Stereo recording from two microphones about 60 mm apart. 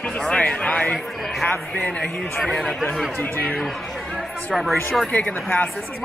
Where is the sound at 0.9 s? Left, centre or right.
Centre.